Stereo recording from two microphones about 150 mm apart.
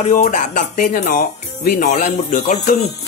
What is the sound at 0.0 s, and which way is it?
Speech, 60° left (ahead or behind).